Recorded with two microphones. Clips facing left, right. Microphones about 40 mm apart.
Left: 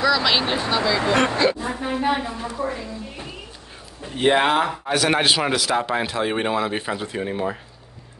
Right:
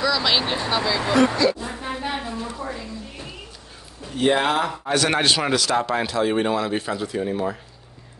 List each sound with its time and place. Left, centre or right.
0.0 s a man's voice: centre
1.3 s a man's voice: left
4.0 s speech: left
4.8 s a man's voice: centre